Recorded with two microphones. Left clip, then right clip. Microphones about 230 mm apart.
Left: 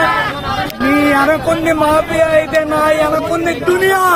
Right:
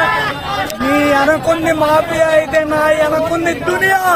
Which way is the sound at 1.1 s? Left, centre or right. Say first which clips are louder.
Even; centre.